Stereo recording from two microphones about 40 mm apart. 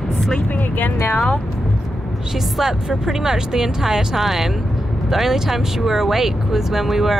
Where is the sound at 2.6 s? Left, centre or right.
Centre.